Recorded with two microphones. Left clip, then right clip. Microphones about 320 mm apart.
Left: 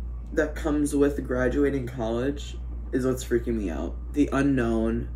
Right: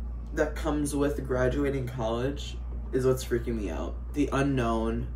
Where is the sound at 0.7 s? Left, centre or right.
Centre.